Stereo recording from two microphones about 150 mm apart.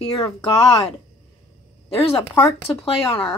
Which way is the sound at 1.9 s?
35° left (ahead or behind).